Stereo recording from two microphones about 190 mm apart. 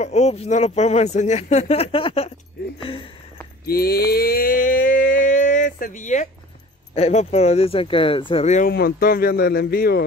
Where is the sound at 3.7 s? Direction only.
55° left (ahead or behind).